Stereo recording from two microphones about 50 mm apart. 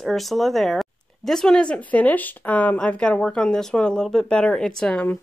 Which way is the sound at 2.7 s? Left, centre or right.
Left.